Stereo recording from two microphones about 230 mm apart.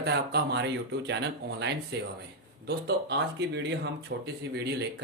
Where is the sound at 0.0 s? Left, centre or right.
Right.